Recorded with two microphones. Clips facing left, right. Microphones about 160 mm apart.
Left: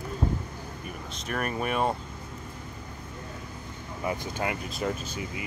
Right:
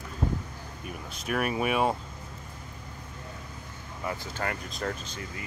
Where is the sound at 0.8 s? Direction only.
5° right (ahead or behind).